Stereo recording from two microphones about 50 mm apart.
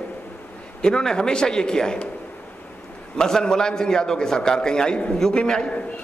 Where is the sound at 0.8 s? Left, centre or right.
Centre.